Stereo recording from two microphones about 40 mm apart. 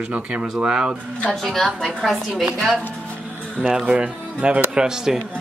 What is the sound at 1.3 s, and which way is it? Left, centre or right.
Speech, centre.